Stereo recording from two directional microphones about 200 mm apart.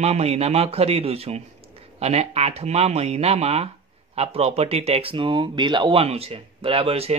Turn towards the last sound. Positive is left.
turn(degrees=-30)  # may be behind; listen again after turning